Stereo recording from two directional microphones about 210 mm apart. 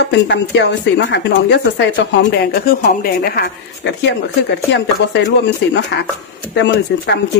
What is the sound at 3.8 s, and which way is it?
Speech, 55° left (ahead or behind).